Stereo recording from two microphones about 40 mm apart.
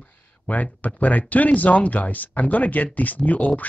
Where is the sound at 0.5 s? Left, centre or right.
Left.